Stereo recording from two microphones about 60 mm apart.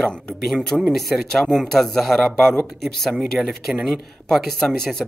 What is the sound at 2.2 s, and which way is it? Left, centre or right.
Speech, centre.